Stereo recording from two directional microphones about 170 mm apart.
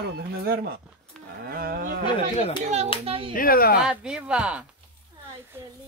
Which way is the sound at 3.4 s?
60° left (ahead or behind).